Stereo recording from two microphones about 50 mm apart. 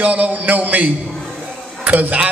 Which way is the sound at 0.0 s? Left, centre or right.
Right.